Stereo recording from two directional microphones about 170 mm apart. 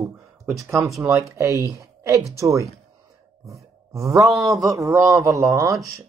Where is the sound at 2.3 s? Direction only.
20° right (ahead or behind).